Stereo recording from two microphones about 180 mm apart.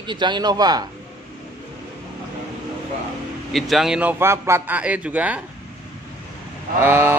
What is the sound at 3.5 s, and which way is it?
A man's voice, centre (ahead or behind).